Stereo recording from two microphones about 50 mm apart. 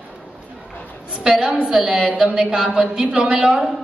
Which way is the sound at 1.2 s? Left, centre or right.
Centre.